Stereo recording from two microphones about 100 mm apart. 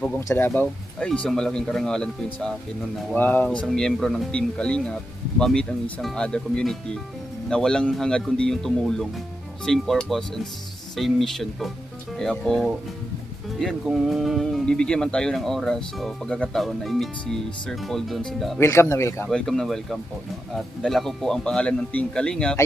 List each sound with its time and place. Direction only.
0.6 s speech: 10° left (ahead or behind)
3.2 s speech: 15° left (ahead or behind)
3.6 s speech: 5° left (ahead or behind)
13.8 s speech: 5° right (ahead or behind)
18.6 s speech: 30° left (ahead or behind)
19.2 s speech: 5° left (ahead or behind)